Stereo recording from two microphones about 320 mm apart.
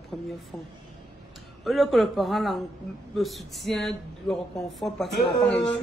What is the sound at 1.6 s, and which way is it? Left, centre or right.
Speech, centre.